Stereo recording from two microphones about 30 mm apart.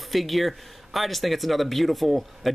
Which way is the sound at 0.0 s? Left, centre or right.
Centre.